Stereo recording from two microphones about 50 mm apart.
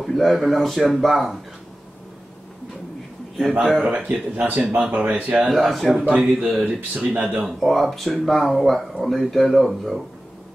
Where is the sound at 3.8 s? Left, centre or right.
Right.